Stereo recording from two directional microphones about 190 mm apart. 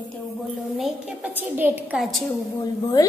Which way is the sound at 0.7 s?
Centre (ahead or behind).